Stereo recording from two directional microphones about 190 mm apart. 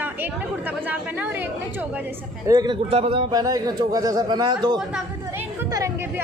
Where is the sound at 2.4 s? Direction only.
20° right (ahead or behind).